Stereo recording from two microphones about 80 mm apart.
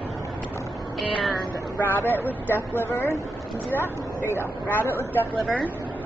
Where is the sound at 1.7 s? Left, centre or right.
Left.